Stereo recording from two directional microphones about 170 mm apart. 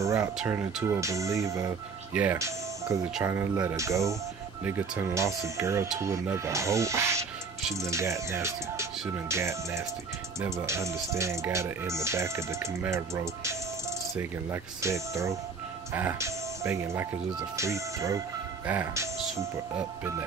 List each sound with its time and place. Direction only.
0.0 s music: 15° right (ahead or behind)
0.4 s speech: 5° right (ahead or behind)